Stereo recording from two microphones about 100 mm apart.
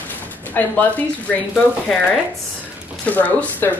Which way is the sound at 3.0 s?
15° left (ahead or behind).